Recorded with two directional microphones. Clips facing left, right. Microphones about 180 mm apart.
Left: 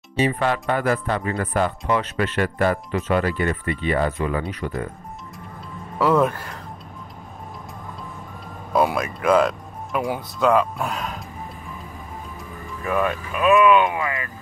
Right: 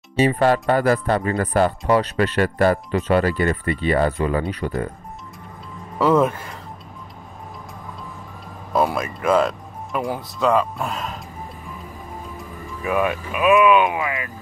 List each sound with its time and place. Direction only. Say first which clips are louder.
0.1 s speech: right 4 dB; 40° right (ahead or behind)
5.9 s speech: right 1 dB; centre (ahead or behind)
8.7 s speech: even; centre (ahead or behind)
12.8 s speech: right 1 dB; 10° right (ahead or behind)